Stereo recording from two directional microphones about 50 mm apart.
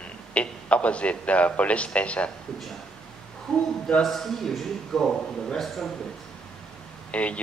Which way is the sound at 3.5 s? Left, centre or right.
Centre.